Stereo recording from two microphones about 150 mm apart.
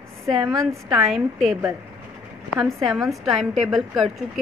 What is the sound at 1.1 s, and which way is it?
Speech, centre (ahead or behind).